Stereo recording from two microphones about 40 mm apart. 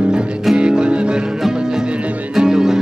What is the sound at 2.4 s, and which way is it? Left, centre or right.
Music, centre.